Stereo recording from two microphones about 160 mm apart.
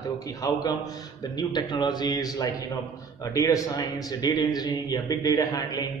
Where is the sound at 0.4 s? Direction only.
25° left (ahead or behind).